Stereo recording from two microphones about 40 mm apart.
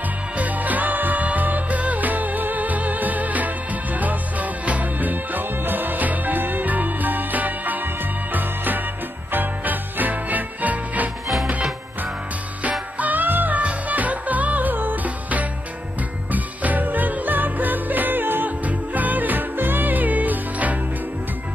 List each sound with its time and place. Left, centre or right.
0.4 s music: right
13.0 s music: right
13.6 s music: right
18.7 s music: right